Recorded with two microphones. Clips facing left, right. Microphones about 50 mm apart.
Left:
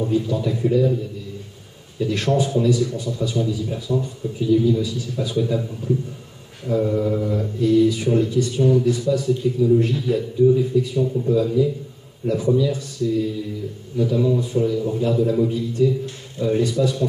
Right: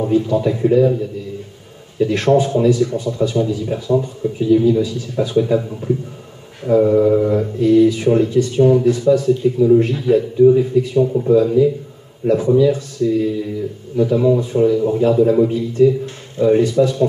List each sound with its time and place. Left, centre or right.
0.1 s a man's voice: right